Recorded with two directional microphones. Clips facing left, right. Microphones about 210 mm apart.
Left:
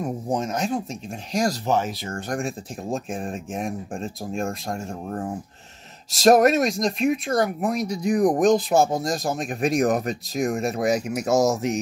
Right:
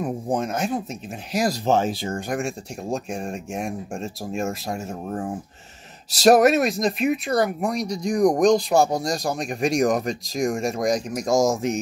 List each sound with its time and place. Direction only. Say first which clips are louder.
0.0 s speech: right 1 dB; centre (ahead or behind)
1.7 s speech: right 3 dB; 30° right (ahead or behind)
2.1 s speech: right 1 dB; 5° right (ahead or behind)